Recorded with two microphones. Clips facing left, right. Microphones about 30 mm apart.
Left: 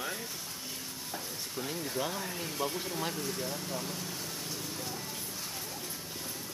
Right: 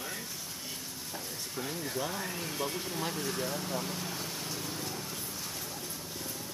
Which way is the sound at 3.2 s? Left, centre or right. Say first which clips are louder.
Right 2 dB; right.